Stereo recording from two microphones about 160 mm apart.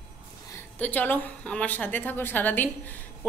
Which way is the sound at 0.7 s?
10° left (ahead or behind).